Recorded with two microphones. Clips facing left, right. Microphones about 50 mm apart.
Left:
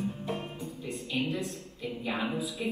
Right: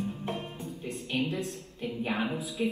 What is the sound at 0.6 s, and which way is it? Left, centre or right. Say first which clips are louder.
Music: even; right.